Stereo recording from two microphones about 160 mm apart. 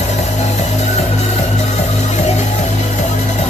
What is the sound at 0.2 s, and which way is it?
Music, 45° left (ahead or behind).